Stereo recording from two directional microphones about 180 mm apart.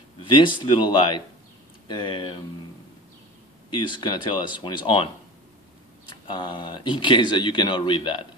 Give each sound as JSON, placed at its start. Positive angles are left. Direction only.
{"t": 0.2, "sound": "speech", "side_deg": 25}
{"t": 3.7, "sound": "speech", "side_deg": 25}